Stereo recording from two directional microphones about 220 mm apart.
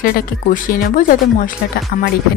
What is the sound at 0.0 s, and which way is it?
Speech, 40° left (ahead or behind).